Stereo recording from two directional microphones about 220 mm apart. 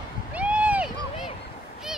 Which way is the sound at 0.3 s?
5° right (ahead or behind).